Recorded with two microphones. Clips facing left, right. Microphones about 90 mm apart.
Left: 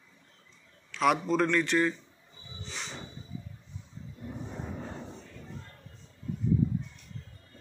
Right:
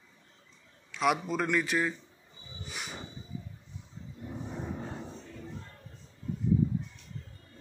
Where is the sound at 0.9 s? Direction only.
5° right (ahead or behind).